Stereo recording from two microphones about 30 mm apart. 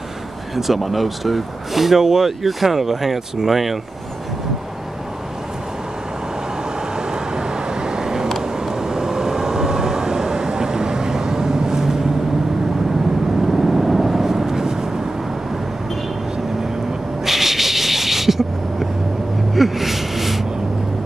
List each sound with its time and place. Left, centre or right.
0.6 s speech: centre
7.0 s vehicle: right
13.5 s vehicle: centre
17.2 s a sound: centre